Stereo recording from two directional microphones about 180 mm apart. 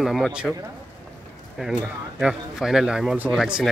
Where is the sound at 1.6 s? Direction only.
5° right (ahead or behind).